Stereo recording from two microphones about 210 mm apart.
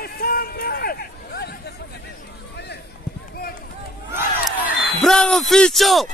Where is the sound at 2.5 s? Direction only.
50° left (ahead or behind).